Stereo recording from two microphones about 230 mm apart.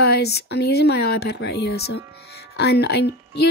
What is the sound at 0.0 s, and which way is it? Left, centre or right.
Speech, left.